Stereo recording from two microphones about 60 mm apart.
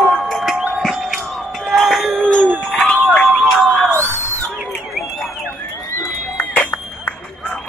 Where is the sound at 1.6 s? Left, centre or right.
Centre.